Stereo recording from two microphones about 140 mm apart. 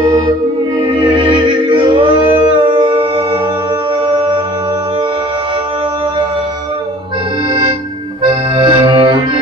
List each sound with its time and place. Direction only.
1.1 s music: 35° right (ahead or behind)
8.2 s accordion: 40° right (ahead or behind)